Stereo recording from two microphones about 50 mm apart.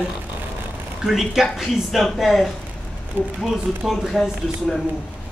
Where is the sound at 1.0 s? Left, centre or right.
Centre.